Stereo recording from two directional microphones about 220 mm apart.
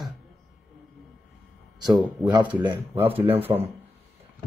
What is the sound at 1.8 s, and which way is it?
Speech, 15° right (ahead or behind).